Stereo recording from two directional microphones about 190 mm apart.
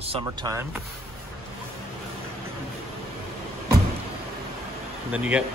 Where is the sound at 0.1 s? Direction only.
25° right (ahead or behind).